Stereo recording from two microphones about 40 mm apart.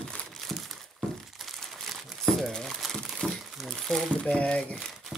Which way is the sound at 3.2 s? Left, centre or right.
Left.